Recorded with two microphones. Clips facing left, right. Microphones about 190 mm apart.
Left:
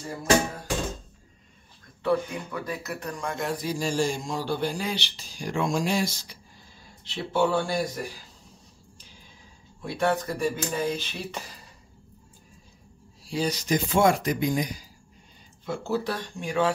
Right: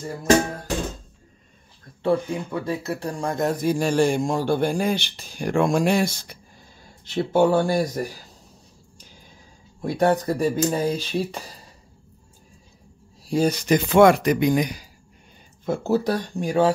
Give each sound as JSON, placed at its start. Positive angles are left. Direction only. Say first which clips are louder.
{"t": 2.0, "sound": "speech", "louder": "right 4 dB", "side_deg": -30}
{"t": 7.1, "sound": "speech", "louder": "right 6 dB", "side_deg": -45}
{"t": 9.8, "sound": "speech", "louder": "right 5 dB", "side_deg": -40}
{"t": 13.2, "sound": "speech", "louder": "right 7 dB", "side_deg": -45}
{"t": 15.6, "sound": "speech", "louder": "right 6 dB", "side_deg": -45}